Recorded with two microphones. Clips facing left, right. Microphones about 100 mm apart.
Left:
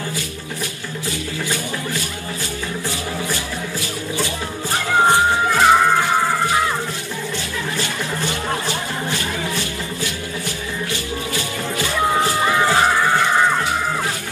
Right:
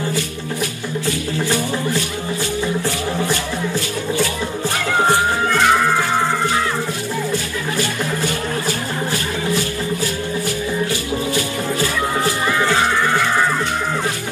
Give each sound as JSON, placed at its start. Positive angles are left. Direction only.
{"t": 5.5, "sound": "music", "side_deg": 10}
{"t": 12.4, "sound": "music", "side_deg": 15}